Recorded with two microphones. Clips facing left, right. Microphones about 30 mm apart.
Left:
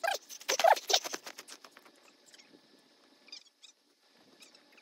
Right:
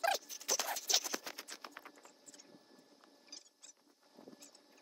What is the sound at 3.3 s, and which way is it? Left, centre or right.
Rodents, left.